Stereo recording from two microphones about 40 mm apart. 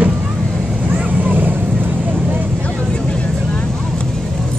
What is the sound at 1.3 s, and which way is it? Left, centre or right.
Vehicle, right.